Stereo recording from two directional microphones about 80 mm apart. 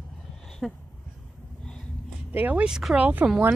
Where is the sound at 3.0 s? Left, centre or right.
Centre.